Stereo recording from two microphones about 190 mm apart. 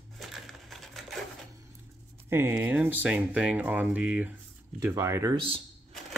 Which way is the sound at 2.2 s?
10° right (ahead or behind).